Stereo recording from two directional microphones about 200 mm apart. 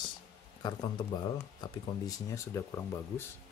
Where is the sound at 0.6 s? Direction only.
20° left (ahead or behind).